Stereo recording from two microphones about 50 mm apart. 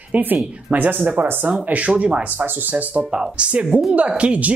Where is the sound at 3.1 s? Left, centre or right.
Centre.